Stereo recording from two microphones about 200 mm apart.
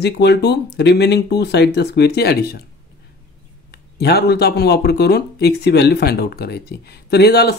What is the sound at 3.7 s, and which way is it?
Speech, 55° left (ahead or behind).